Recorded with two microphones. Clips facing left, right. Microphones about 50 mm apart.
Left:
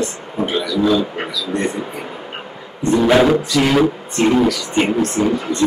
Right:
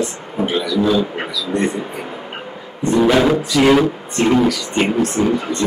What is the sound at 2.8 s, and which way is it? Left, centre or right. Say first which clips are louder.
Speech: left 1 dB; centre.